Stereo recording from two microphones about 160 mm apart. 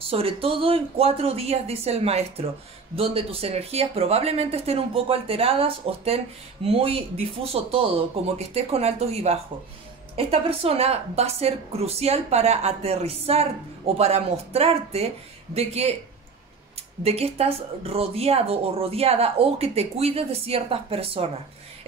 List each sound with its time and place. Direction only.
0.0 s speech: 35° right (ahead or behind)
17.0 s speech: 40° right (ahead or behind)